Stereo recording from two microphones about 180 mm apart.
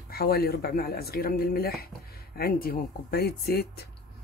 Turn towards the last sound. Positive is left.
turn(degrees=60)  # may be behind; listen again after turning